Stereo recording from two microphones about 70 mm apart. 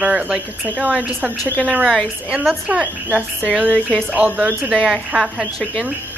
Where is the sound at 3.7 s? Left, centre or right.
Centre.